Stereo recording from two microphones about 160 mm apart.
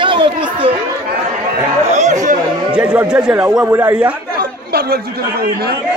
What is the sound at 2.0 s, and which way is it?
Speech, 50° right (ahead or behind).